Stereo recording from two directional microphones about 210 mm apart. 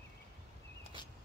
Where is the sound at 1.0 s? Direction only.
20° left (ahead or behind).